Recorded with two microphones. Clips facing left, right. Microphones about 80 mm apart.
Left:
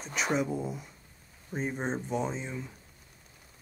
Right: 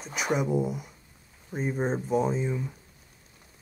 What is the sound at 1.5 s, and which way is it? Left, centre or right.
Speech, centre.